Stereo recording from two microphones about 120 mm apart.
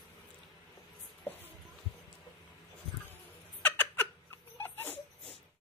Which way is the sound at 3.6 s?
15° left (ahead or behind).